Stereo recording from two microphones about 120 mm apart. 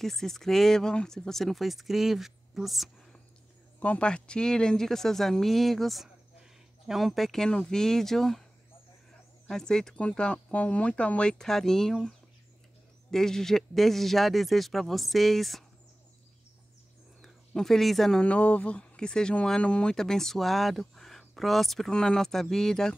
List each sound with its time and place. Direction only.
0.0 s speech: 5° left (ahead or behind)
3.8 s speech: 10° left (ahead or behind)
9.5 s speech: 5° left (ahead or behind)
13.1 s speech: 5° left (ahead or behind)
17.2 s speech: centre (ahead or behind)